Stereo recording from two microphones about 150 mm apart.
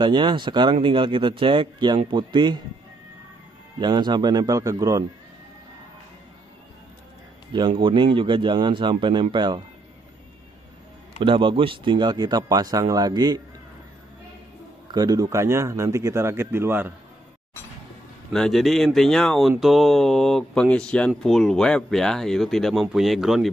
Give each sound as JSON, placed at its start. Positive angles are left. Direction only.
{"t": 0.0, "sound": "speech", "side_deg": -30}
{"t": 3.8, "sound": "speech", "side_deg": -30}
{"t": 7.5, "sound": "speech", "side_deg": -35}
{"t": 11.1, "sound": "speech", "side_deg": -35}
{"t": 14.9, "sound": "speech", "side_deg": -25}
{"t": 18.3, "sound": "speech", "side_deg": 0}